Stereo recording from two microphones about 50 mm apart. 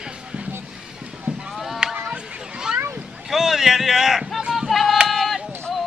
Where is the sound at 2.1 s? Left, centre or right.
Centre.